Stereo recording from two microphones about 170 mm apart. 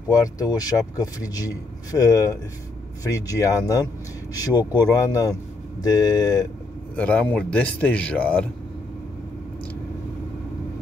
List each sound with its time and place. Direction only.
0.1 s speech: 20° left (ahead or behind)
7.0 s speech: 5° left (ahead or behind)